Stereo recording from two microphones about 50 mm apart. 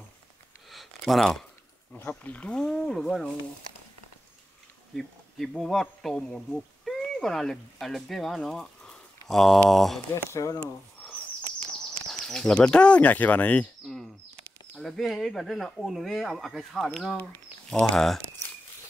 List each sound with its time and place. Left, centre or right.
0.7 s a sound: centre
2.0 s speech: left
2.5 s speech: centre
5.6 s speech: centre
8.4 s a sound: centre
9.7 s speech: centre
10.1 s speech: left
12.1 s speech: centre; by 13.7 s left
14.8 s speech: centre